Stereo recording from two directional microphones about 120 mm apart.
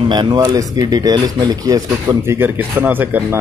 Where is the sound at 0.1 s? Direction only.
35° right (ahead or behind).